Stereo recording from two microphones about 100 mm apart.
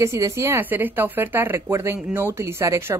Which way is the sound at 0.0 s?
30° right (ahead or behind).